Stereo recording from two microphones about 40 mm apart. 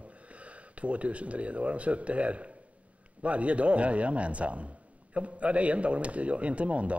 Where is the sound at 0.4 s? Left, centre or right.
Right.